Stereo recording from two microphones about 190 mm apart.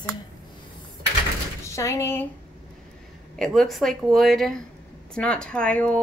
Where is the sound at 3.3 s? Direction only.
Centre (ahead or behind).